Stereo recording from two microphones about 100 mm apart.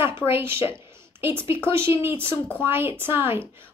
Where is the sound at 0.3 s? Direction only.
25° right (ahead or behind).